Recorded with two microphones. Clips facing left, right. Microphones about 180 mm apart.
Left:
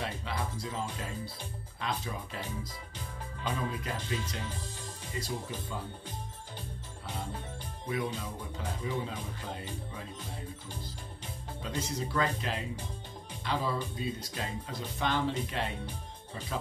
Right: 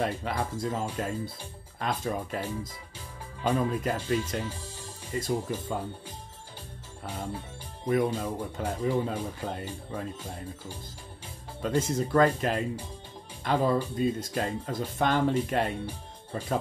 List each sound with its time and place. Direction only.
0.0 s speech: 50° right (ahead or behind)
7.8 s speech: 50° right (ahead or behind)
11.6 s speech: 50° right (ahead or behind)